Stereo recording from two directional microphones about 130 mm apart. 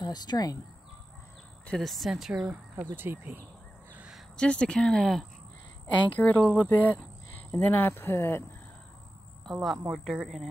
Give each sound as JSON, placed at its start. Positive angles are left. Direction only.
{"t": 0.0, "sound": "speech", "side_deg": 30}
{"t": 1.7, "sound": "speech", "side_deg": 0}
{"t": 3.9, "sound": "crow", "side_deg": -10}
{"t": 4.4, "sound": "speech", "side_deg": 5}
{"t": 6.4, "sound": "speech", "side_deg": -10}
{"t": 6.8, "sound": "speech", "side_deg": 10}
{"t": 9.5, "sound": "speech", "side_deg": 0}